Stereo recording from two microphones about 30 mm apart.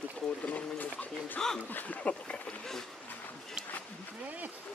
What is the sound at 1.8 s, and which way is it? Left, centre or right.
Speech, left.